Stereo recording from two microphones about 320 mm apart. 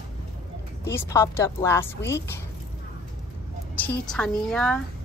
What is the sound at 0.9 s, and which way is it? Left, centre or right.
Speech, centre.